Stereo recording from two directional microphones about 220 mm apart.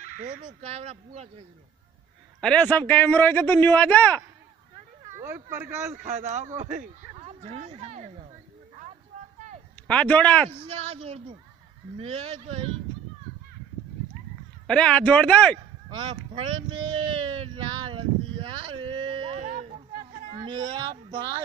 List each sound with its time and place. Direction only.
0.2 s speech: 30° right (ahead or behind)
2.4 s speech: 5° left (ahead or behind)
5.2 s speech: 10° right (ahead or behind)
6.2 s speech: 35° right (ahead or behind)
7.2 s a sound: 30° right (ahead or behind)
9.8 s speech: 5° left (ahead or behind)
10.5 s speech: 25° right (ahead or behind)
14.7 s speech: 5° left (ahead or behind)
15.9 s speech: 25° right (ahead or behind)
17.2 s a sound: 25° right (ahead or behind)
20.3 s speech: 20° right (ahead or behind)